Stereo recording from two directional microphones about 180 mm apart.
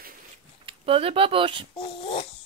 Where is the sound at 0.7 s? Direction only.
30° right (ahead or behind).